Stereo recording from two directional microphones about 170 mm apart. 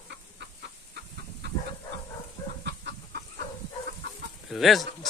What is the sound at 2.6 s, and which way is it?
Chicken, 75° right (ahead or behind).